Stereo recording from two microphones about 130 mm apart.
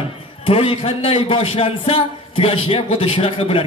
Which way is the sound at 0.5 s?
45° left (ahead or behind).